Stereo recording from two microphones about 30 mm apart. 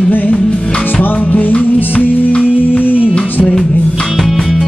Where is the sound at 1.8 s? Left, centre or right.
Left.